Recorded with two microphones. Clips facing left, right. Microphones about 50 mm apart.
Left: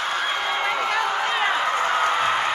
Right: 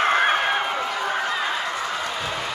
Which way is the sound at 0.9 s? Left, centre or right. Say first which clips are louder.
Left 2 dB; left.